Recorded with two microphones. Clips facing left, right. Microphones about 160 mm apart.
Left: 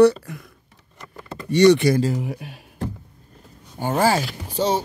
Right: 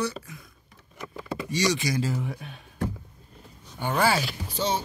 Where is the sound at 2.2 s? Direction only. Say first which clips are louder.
Left 4 dB; 10° left (ahead or behind).